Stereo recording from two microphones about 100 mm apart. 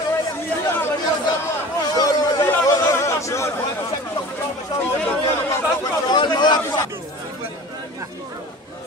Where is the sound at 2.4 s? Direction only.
30° left (ahead or behind).